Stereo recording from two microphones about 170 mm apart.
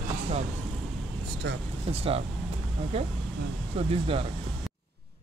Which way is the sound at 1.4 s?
90° right.